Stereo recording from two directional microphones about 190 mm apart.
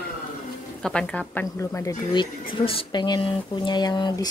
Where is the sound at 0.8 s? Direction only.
5° left (ahead or behind).